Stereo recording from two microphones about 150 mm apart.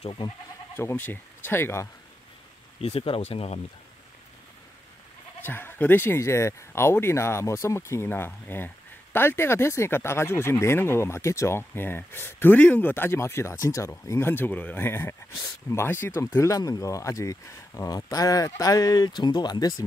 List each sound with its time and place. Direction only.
0.0 s speech: 35° left (ahead or behind)
0.7 s speech: 15° left (ahead or behind)
2.8 s speech: 40° left (ahead or behind)
5.4 s speech: 15° left (ahead or behind)